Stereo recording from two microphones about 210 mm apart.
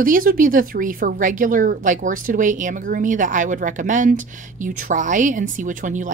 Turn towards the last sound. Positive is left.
turn(degrees=-40)  # may be behind; listen again after turning